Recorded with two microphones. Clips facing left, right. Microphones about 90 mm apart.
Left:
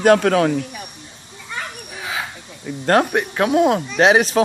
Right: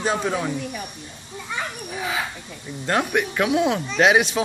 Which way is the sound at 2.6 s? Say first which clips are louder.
Left 7 dB; 55° left (ahead or behind).